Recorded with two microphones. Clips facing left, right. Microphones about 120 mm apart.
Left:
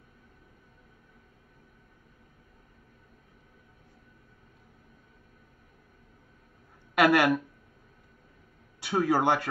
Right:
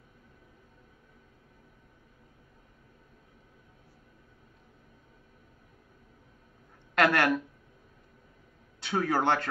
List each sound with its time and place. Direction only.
7.0 s a man's voice: 10° left (ahead or behind)
8.8 s a man's voice: 10° left (ahead or behind)